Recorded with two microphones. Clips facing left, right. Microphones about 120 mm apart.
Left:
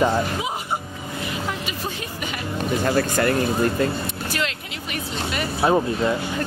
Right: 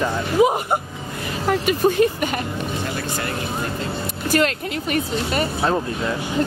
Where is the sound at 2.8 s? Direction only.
55° left (ahead or behind).